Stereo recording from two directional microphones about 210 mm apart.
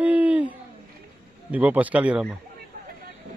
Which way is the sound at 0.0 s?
5° right (ahead or behind).